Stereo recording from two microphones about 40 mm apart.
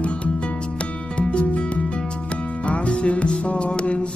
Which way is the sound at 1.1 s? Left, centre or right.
Left.